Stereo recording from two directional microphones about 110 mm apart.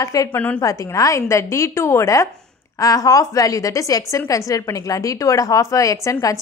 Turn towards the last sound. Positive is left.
turn(degrees=30)  # may be behind; listen again after turning